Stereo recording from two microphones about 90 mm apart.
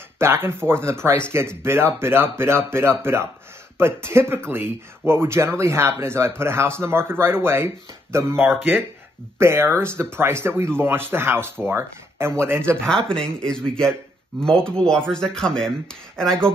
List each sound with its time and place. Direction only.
0.2 s speech: 25° right (ahead or behind)
12.8 s speech: 10° left (ahead or behind)